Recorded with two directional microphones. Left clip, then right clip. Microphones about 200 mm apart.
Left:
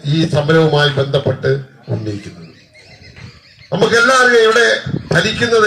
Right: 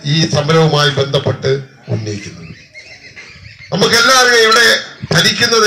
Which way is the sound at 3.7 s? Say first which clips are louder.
Right 1 dB; 65° left (ahead or behind).